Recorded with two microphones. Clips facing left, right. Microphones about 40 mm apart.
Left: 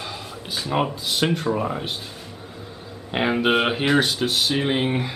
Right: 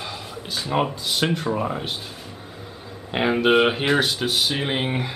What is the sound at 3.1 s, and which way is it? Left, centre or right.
Speech, centre.